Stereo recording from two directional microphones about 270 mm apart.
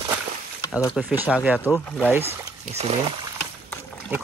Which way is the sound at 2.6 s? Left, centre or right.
Right.